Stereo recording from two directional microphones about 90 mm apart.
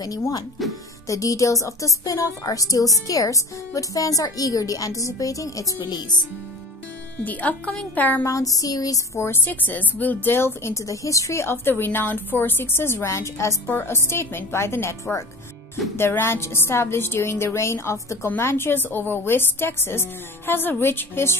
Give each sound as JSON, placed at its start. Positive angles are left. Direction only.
{"t": 0.6, "sound": "speech", "side_deg": 0}
{"t": 1.0, "sound": "a woman's voice", "side_deg": 35}
{"t": 5.8, "sound": "speech", "side_deg": 50}
{"t": 7.2, "sound": "a woman's voice", "side_deg": 15}
{"t": 8.3, "sound": "a woman's voice", "side_deg": 40}